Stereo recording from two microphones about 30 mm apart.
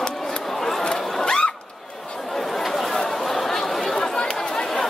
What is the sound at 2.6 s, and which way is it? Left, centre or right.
Chatter, centre.